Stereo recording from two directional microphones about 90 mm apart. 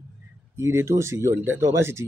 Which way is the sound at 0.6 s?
30° right (ahead or behind).